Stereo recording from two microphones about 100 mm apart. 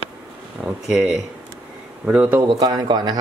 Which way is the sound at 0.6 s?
5° right (ahead or behind).